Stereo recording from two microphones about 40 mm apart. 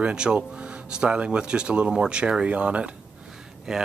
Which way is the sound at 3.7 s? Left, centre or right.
Centre.